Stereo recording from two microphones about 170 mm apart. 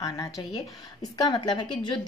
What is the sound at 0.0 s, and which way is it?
A woman's voice, 20° left (ahead or behind).